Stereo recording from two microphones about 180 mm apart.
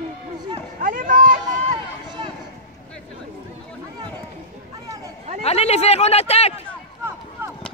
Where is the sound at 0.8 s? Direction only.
50° right (ahead or behind).